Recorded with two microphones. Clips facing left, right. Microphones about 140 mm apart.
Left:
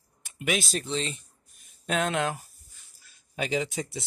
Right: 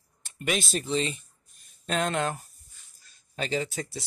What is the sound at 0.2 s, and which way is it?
Speech, 10° left (ahead or behind).